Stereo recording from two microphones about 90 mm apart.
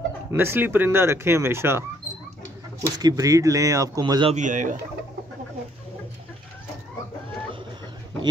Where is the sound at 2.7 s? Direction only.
45° right (ahead or behind).